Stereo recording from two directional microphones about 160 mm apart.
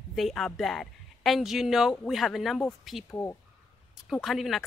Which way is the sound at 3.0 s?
15° left (ahead or behind).